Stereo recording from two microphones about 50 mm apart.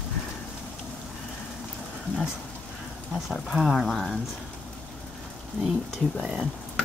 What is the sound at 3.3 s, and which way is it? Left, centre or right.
Speech, centre.